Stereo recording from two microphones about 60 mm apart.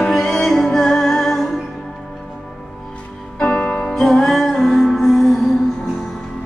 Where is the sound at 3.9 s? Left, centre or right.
Centre.